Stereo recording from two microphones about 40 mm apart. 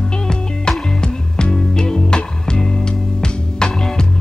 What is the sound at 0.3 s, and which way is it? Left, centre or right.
Music, centre.